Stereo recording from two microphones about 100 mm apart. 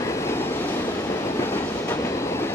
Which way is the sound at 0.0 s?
30° left (ahead or behind).